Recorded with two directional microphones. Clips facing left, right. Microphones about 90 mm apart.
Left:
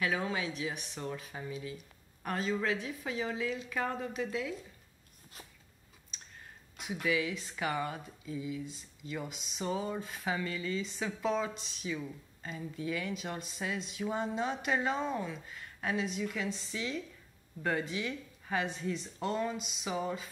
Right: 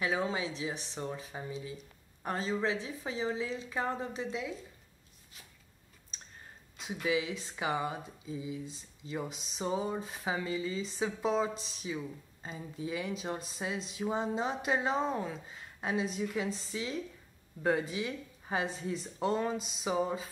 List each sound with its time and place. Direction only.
0.0 s speech: 25° right (ahead or behind)
6.8 s speech: 25° right (ahead or behind)
19.9 s speech: 20° right (ahead or behind)